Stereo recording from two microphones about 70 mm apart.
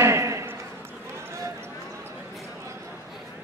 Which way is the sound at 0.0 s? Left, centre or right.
Right.